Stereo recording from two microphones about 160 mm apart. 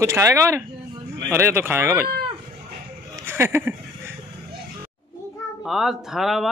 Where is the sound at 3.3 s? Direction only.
15° right (ahead or behind).